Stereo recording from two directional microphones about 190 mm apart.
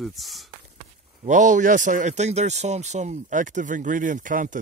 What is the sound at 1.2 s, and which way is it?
Speech, 40° right (ahead or behind).